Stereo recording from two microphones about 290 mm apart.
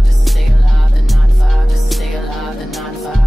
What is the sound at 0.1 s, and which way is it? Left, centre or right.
Music, centre.